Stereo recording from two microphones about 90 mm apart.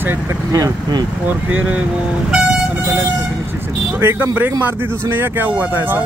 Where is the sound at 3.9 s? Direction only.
25° right (ahead or behind).